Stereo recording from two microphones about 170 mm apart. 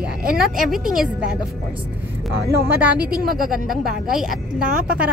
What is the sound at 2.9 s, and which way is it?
Speech, 60° right (ahead or behind).